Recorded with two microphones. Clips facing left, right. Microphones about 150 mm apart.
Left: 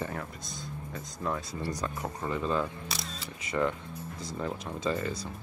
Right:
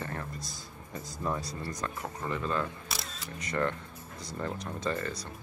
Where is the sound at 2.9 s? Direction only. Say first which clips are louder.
Left 1 dB; centre (ahead or behind).